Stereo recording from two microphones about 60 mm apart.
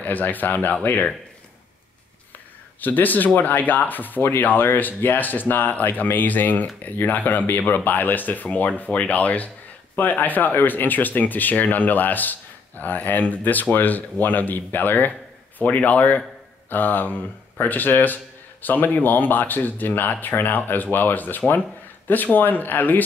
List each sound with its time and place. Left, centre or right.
0.0 s speech: left
2.8 s speech: left
4.2 s speech: left
4.5 s speech: left